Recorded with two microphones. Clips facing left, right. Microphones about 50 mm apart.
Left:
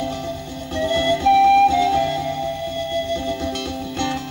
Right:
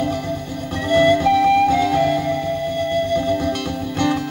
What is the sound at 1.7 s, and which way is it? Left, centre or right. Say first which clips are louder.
Music: right 1 dB; right.